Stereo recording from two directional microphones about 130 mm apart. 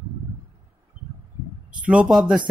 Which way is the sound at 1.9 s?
5° right (ahead or behind).